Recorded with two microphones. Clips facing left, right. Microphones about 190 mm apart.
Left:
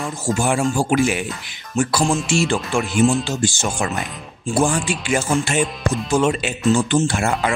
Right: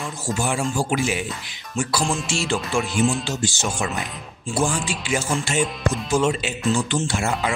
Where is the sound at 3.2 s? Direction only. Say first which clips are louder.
Left 3 dB; 50° left (ahead or behind).